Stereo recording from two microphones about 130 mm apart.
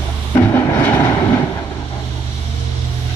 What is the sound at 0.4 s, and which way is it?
Vehicle, 20° left (ahead or behind).